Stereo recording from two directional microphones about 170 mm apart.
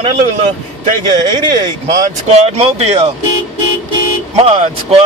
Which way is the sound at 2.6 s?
40° right (ahead or behind).